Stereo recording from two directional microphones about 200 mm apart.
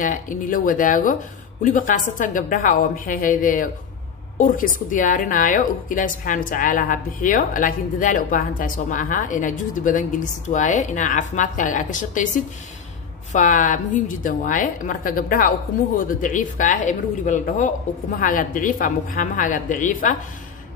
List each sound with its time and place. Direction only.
0.0 s a woman's voice: 40° left (ahead or behind)